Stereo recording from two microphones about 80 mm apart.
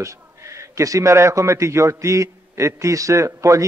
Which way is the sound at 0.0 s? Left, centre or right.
Right.